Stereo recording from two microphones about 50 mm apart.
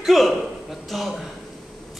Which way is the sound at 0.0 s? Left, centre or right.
Centre.